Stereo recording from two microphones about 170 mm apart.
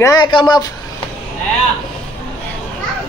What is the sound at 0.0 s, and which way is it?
Speech, 25° left (ahead or behind).